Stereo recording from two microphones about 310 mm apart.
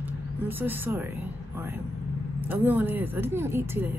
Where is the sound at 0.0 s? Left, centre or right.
Centre.